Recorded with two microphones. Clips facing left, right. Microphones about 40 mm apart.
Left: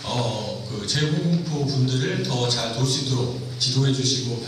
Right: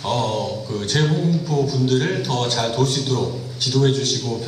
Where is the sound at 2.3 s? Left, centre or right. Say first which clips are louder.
Right 4 dB; right.